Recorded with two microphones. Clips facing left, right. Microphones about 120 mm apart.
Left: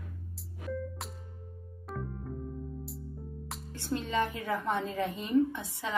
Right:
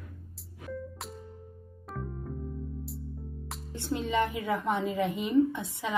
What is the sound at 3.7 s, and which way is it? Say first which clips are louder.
A woman's voice: right 2 dB; 20° right (ahead or behind).